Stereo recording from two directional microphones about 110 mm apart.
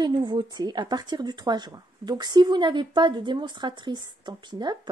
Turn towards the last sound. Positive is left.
turn(degrees=-40)  # may be behind; listen again after turning